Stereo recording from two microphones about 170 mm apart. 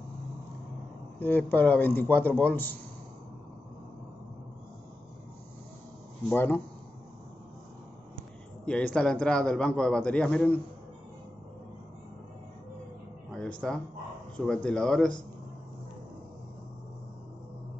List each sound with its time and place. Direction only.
1.2 s a man's voice: 10° left (ahead or behind)
6.2 s a man's voice: 10° left (ahead or behind)
8.6 s a man's voice: 5° left (ahead or behind)
13.3 s music: 5° left (ahead or behind)
14.3 s a man's voice: 5° left (ahead or behind)